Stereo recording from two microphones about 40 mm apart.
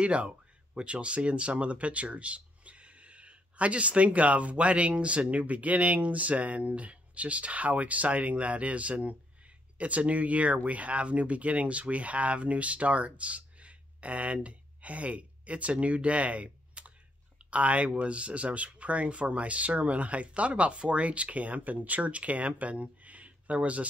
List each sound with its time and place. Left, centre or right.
0.0 s speech: right